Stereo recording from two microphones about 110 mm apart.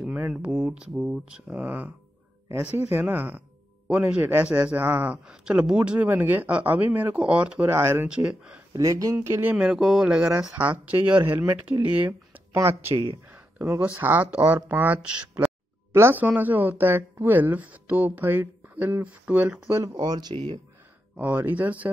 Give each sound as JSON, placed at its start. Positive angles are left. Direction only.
{"t": 0.0, "sound": "speech", "side_deg": -10}
{"t": 8.1, "sound": "speech", "side_deg": -10}
{"t": 8.7, "sound": "speech", "side_deg": -30}
{"t": 20.0, "sound": "speech", "side_deg": -40}
{"t": 21.2, "sound": "speech", "side_deg": -15}